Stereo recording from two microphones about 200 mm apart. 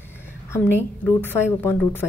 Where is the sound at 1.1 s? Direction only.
10° left (ahead or behind).